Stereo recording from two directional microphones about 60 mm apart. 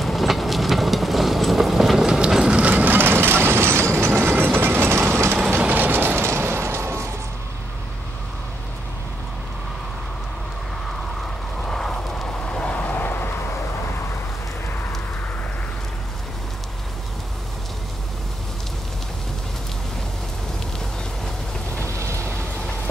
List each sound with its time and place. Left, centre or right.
0.0 s train: centre
2.6 s a sound: right
4.3 s train: right
6.2 s a sound: right
11.6 s vehicle: centre; by 13.3 s left
21.8 s rain: right